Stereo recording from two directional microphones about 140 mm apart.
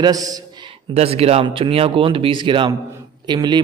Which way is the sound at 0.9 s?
45° right (ahead or behind).